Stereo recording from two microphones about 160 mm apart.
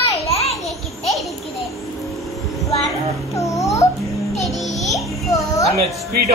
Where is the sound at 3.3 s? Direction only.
20° left (ahead or behind).